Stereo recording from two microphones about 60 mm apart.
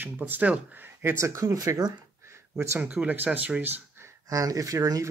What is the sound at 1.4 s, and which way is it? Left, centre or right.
Speech, right.